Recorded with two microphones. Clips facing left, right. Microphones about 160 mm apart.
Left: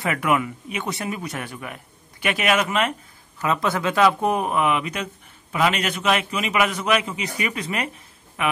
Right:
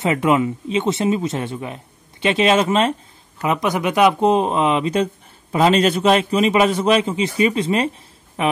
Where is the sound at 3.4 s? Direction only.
15° right (ahead or behind).